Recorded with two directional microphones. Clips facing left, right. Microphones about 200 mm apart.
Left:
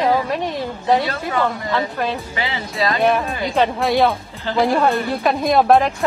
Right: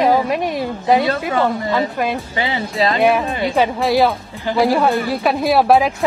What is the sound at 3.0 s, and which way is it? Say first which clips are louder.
Speech: right 2 dB; 10° right (ahead or behind).